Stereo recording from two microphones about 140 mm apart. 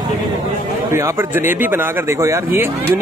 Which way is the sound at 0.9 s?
15° right (ahead or behind).